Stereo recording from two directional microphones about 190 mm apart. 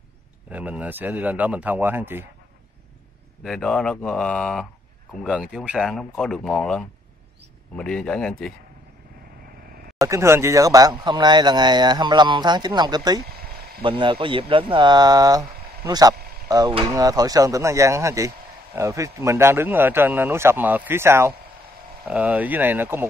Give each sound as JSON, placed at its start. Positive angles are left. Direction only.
{"t": 0.5, "sound": "speech", "side_deg": -10}
{"t": 3.4, "sound": "speech", "side_deg": 5}
{"t": 9.9, "sound": "speech", "side_deg": -15}
{"t": 13.3, "sound": "a sound", "side_deg": -55}
{"t": 13.8, "sound": "speech", "side_deg": -25}